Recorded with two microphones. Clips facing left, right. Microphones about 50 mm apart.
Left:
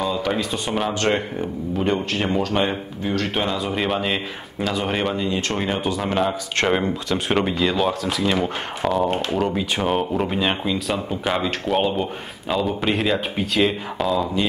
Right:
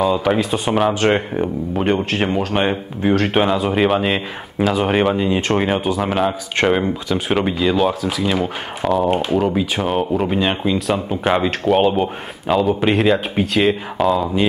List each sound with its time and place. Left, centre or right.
0.1 s speech: centre
2.4 s speech: right
3.4 s speech: centre
11.6 s speech: centre